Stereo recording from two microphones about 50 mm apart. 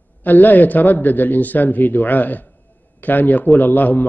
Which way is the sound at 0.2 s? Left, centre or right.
Left.